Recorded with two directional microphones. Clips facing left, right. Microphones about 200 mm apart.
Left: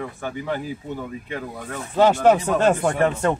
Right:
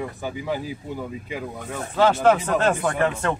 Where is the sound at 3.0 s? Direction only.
25° left (ahead or behind).